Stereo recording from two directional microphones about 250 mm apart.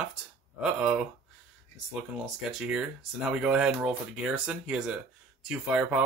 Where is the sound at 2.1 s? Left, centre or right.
Centre.